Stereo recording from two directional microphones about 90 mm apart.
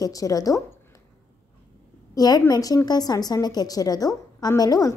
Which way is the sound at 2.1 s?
45° left (ahead or behind).